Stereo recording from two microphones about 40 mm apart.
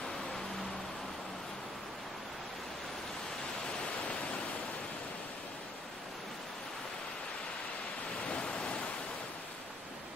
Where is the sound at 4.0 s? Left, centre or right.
Left.